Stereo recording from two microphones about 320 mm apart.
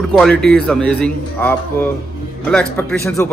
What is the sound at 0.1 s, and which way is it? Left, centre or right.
A man's voice, centre.